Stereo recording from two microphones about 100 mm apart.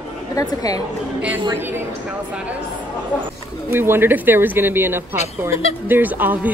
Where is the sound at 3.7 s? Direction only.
20° right (ahead or behind).